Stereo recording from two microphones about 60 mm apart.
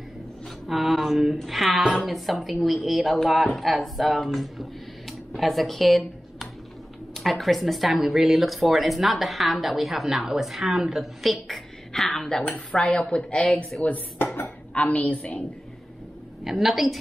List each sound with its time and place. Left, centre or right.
0.7 s speech: centre
1.8 s a woman's voice: centre
2.0 s speech: centre
12.8 s a woman's voice: centre
14.2 s dishes: left
14.7 s a woman's voice: left
16.4 s speech: centre